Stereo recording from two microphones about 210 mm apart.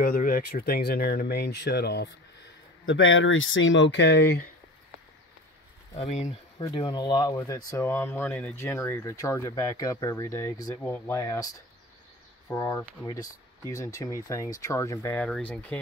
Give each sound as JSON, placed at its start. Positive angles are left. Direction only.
{"t": 0.0, "sound": "speech", "side_deg": 40}
{"t": 2.8, "sound": "speech", "side_deg": 70}
{"t": 5.9, "sound": "speech", "side_deg": 30}
{"t": 6.6, "sound": "speech", "side_deg": 20}